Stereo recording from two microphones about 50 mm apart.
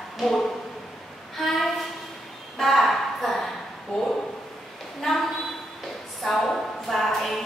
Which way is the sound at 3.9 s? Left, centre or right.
Centre.